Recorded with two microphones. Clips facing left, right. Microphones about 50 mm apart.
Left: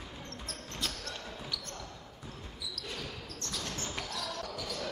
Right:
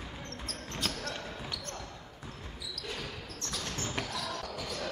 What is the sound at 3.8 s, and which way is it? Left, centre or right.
Basketball bounce, centre.